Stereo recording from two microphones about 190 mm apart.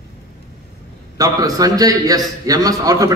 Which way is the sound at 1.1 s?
20° right (ahead or behind).